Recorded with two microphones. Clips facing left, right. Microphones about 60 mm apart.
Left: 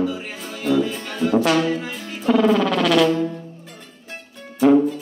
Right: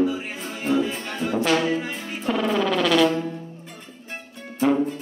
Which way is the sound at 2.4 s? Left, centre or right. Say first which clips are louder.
Left 4 dB; centre.